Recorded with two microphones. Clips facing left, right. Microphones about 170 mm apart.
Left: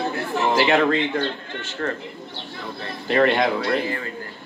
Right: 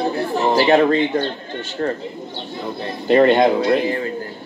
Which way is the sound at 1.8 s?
30° right (ahead or behind).